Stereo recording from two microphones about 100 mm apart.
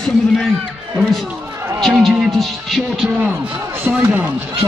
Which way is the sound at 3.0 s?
10° right (ahead or behind).